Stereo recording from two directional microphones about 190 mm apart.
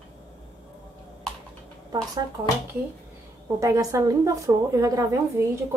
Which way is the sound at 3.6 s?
15° right (ahead or behind).